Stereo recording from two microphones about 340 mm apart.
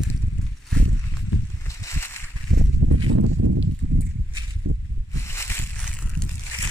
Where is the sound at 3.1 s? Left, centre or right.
Right.